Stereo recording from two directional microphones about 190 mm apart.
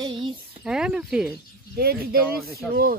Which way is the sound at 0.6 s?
5° right (ahead or behind).